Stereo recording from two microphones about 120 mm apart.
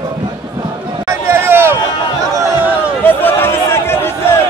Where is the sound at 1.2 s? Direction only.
20° right (ahead or behind).